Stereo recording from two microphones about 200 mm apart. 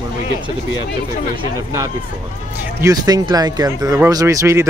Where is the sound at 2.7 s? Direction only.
20° right (ahead or behind).